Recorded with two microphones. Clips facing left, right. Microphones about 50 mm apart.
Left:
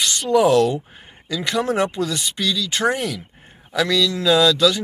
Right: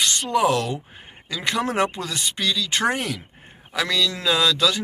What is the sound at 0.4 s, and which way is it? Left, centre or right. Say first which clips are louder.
Speech: left 6 dB; centre.